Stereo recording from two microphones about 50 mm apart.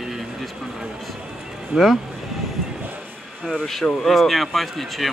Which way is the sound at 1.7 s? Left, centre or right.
Centre.